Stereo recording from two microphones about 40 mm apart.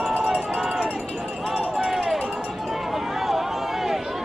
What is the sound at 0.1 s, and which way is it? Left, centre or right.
Run, centre.